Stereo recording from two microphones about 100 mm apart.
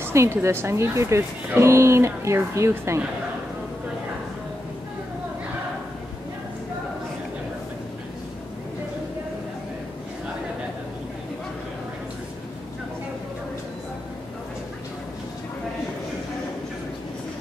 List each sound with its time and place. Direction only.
0.0 s speech: 25° right (ahead or behind)